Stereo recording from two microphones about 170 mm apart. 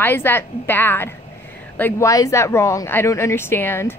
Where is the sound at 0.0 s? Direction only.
10° left (ahead or behind).